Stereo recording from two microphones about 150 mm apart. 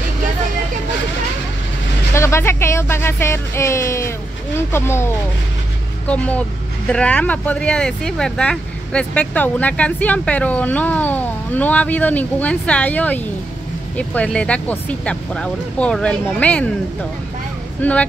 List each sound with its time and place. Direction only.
2.1 s speech: 15° left (ahead or behind)
17.8 s speech: 10° left (ahead or behind)